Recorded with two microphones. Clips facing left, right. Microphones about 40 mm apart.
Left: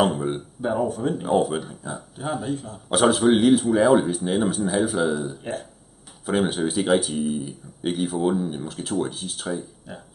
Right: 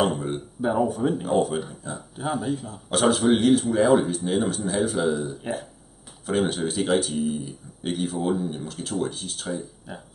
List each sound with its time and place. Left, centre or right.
0.0 s speech: centre
1.2 s speech: centre